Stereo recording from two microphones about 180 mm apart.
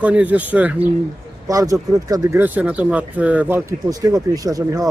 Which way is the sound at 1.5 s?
20° right (ahead or behind).